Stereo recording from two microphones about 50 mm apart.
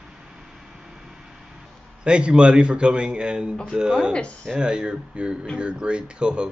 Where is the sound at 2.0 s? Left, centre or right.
Right.